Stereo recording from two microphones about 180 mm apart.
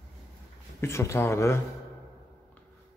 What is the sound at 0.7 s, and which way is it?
Speech, 15° left (ahead or behind).